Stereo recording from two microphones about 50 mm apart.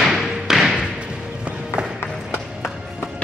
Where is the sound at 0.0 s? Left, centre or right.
Centre.